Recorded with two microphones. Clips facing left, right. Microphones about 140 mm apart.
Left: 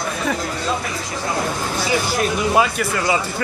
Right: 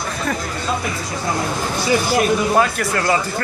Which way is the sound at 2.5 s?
5° left (ahead or behind).